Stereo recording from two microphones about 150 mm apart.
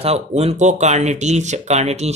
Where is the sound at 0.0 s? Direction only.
40° right (ahead or behind).